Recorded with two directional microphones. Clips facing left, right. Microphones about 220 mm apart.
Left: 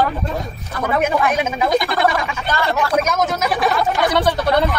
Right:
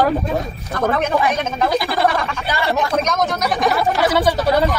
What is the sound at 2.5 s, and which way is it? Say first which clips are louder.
Speech: even; 15° right (ahead or behind).